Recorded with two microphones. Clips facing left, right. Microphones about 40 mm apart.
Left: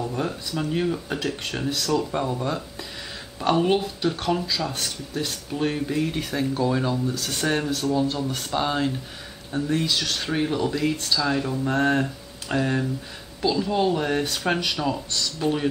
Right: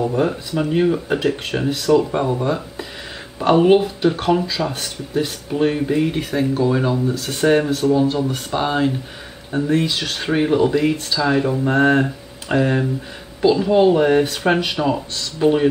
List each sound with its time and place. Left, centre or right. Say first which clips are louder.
0.0 s speech: right 8 dB; right